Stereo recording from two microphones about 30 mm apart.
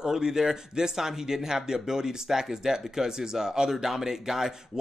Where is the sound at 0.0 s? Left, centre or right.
Centre.